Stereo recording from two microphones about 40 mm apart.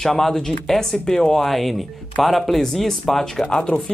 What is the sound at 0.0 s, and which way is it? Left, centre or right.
Speech, centre.